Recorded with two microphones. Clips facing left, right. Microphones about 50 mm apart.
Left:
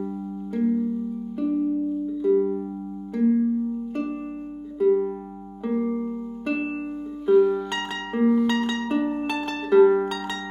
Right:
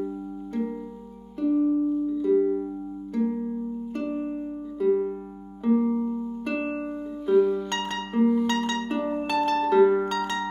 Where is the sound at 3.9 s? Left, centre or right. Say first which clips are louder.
Even; centre.